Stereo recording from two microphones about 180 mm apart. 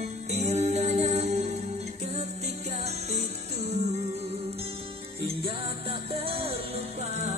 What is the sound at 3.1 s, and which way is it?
Music, 35° right (ahead or behind).